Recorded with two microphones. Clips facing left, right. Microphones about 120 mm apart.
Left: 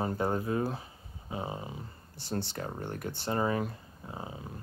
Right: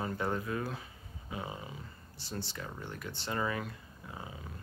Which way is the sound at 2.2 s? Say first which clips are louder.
Left 6 dB; 55° left (ahead or behind).